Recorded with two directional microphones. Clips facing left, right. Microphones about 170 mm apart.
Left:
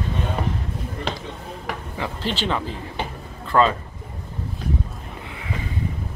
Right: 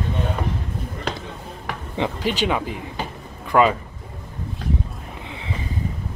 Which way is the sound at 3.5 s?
15° right (ahead or behind).